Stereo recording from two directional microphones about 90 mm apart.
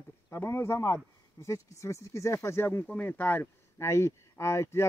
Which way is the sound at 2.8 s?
15° left (ahead or behind).